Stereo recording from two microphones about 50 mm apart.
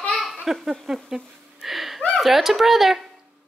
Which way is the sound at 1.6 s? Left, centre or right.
Centre.